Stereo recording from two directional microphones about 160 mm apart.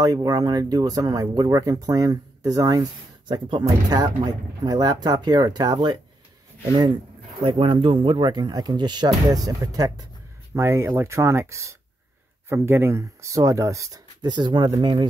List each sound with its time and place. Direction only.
0.0 s speech: 25° right (ahead or behind)
7.4 s speech: 35° right (ahead or behind)